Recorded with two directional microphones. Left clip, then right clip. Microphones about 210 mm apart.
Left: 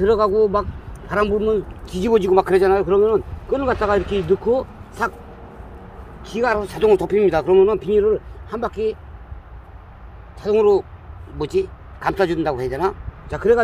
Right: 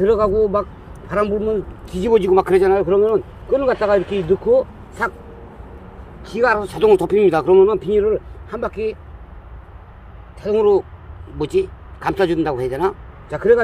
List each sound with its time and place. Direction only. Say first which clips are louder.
0.0 s a man's voice: right 1 dB; 15° right (ahead or behind)
6.2 s speech: right 3 dB; 20° right (ahead or behind)
10.5 s a man's voice: even; 10° right (ahead or behind)